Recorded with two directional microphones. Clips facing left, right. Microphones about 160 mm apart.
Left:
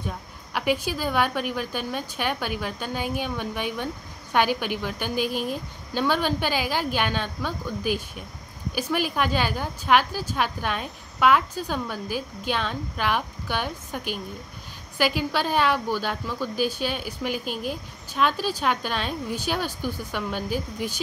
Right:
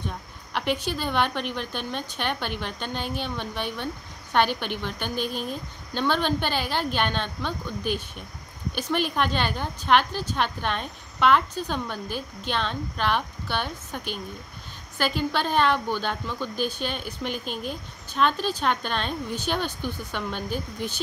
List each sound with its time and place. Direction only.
0.0 s a woman's voice: 10° left (ahead or behind)